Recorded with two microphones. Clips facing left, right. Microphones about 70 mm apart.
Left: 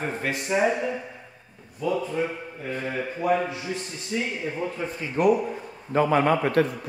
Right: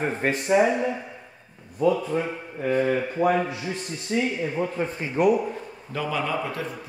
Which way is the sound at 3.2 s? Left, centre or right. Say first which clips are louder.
Right 1 dB; right.